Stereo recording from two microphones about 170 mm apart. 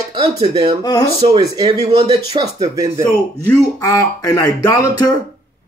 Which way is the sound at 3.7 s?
20° left (ahead or behind).